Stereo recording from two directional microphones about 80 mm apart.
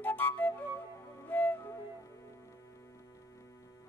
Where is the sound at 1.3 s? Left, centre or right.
Left.